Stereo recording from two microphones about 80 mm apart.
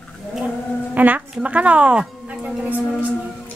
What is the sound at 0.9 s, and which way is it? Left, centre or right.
A woman's voice, right.